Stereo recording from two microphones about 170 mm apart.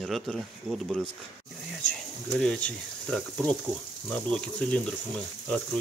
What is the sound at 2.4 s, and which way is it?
Speech, 5° left (ahead or behind).